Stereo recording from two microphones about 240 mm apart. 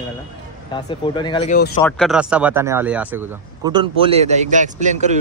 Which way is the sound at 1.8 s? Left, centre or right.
Centre.